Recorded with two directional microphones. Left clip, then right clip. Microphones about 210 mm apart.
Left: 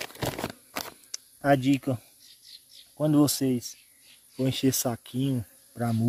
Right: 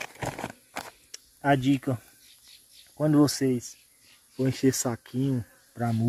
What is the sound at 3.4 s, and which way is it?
Speech, 15° left (ahead or behind).